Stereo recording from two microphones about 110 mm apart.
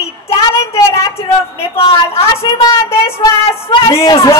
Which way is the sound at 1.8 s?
60° left (ahead or behind).